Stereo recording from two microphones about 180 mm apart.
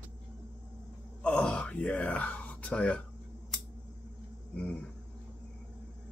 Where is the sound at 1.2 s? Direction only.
5° left (ahead or behind).